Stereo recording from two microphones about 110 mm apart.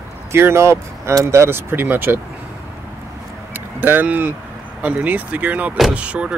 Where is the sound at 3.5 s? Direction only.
20° right (ahead or behind).